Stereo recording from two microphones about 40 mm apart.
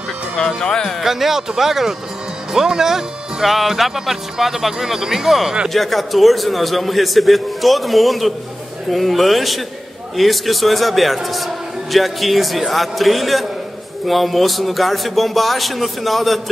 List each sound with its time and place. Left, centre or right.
0.6 s speech: centre
1.0 s a man's voice: centre